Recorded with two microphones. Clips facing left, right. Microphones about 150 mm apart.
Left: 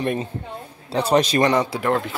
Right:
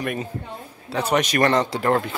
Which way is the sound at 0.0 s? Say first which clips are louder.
Left 3 dB; 30° left (ahead or behind).